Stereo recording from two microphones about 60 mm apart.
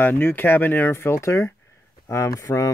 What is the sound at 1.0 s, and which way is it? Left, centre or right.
Speech, left.